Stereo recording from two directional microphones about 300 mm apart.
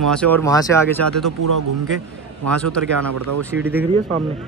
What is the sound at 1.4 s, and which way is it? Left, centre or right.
Speech, right.